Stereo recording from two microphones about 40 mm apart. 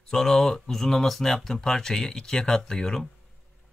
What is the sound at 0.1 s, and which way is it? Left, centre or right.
Speech, centre.